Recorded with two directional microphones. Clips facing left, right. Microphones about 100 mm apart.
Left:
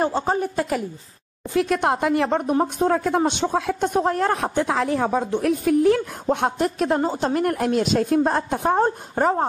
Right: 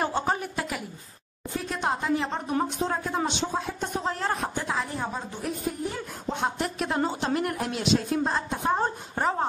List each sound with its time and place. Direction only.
0.0 s a woman's voice: 35° left (ahead or behind)
1.6 s a woman's voice: 65° left (ahead or behind); by 6.0 s 85° left
6.2 s a woman's voice: 55° left (ahead or behind)